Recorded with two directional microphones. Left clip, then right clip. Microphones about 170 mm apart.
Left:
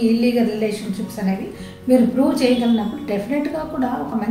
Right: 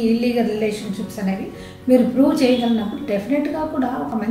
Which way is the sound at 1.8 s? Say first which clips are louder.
Right 1 dB; 15° left (ahead or behind).